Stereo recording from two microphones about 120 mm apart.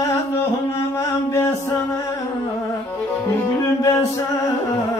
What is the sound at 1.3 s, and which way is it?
Music, 20° left (ahead or behind).